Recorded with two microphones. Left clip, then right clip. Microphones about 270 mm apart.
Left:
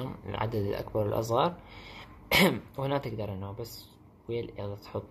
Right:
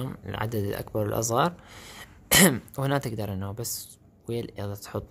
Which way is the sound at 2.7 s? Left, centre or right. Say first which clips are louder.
Right 3 dB; right.